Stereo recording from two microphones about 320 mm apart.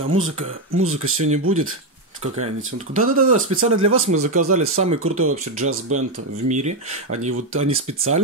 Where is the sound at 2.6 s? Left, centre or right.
Right.